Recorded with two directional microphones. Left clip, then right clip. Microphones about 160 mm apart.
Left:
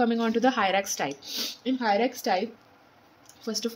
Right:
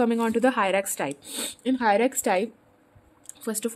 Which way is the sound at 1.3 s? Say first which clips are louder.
Right 1 dB; 40° right (ahead or behind).